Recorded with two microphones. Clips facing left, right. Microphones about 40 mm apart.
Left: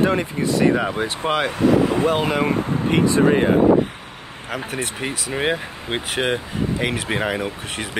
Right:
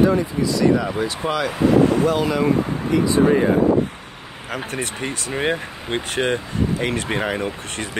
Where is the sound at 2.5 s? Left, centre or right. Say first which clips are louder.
Right 1 dB; left.